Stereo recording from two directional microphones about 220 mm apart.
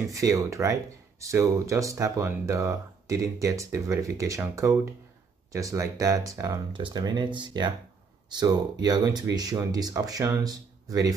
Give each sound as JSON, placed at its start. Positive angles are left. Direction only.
{"t": 0.1, "sound": "speech", "side_deg": -15}